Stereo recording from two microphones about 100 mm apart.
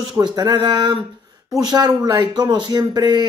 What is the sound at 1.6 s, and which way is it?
A man's voice, 45° right (ahead or behind).